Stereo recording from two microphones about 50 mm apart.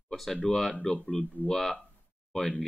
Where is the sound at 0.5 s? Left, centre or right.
Left.